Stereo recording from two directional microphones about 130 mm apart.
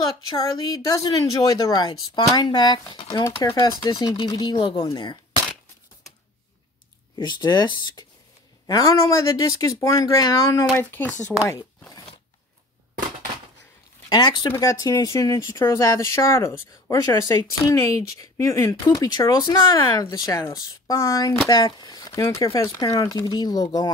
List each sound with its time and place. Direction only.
0.4 s speech: 30° left (ahead or behind)
7.2 s speech: 35° left (ahead or behind)
10.8 s speech: 15° left (ahead or behind)
14.0 s speech: 35° left (ahead or behind)